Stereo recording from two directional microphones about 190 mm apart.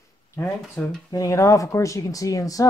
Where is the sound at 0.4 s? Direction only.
15° left (ahead or behind).